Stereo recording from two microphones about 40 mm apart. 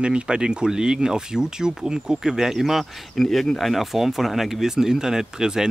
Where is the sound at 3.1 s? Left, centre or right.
Centre.